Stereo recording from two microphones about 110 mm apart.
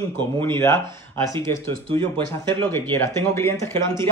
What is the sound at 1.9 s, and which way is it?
Speech, 50° right (ahead or behind).